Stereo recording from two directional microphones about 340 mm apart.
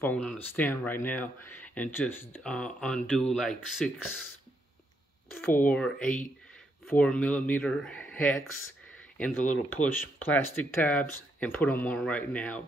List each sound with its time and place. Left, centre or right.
0.0 s speech: centre
5.6 s speech: centre
6.9 s speech: centre